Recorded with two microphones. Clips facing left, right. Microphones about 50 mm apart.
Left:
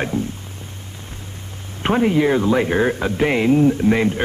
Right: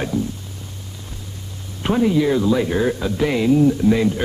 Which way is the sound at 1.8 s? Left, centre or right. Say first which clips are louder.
Left 1 dB; left.